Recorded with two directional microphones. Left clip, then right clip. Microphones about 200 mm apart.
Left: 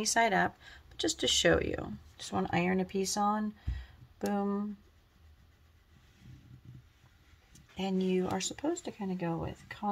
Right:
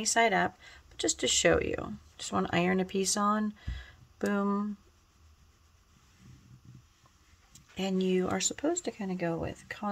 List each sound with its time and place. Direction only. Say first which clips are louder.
0.0 s speech: right 2 dB; 10° right (ahead or behind); by 4.6 s 35° right (ahead or behind)
7.5 s speech: right 2 dB; 30° right (ahead or behind)